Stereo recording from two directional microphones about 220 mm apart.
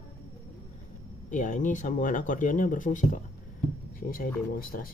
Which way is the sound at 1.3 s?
35° left (ahead or behind).